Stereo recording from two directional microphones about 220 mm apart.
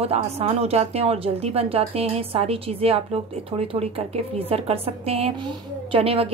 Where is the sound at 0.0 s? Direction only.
25° right (ahead or behind).